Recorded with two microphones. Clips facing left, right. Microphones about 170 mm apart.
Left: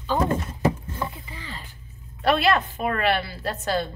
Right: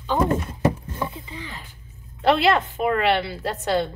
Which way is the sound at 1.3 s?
15° right (ahead or behind).